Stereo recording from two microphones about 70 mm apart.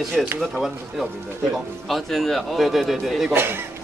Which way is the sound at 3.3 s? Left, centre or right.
Right.